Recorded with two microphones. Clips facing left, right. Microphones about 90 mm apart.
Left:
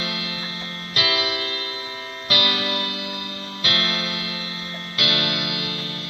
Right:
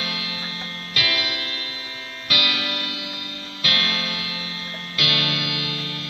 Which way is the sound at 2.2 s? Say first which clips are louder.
Left 2 dB; 40° left (ahead or behind).